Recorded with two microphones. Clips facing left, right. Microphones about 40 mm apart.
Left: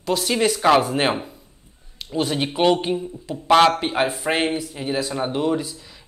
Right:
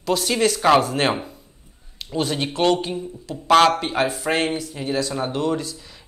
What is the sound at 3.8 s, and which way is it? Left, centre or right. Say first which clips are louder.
Speech: even; centre.